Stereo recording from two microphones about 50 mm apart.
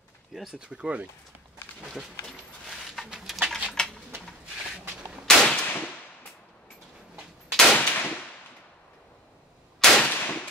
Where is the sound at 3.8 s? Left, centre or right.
Centre.